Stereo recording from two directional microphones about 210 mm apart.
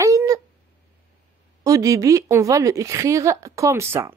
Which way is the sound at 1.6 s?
15° right (ahead or behind).